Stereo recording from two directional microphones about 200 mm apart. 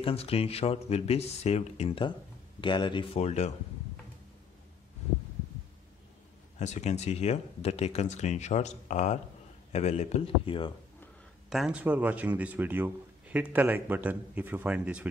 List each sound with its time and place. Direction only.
0.0 s speech: 30° left (ahead or behind)
6.6 s speech: 35° left (ahead or behind)
11.5 s speech: 5° right (ahead or behind)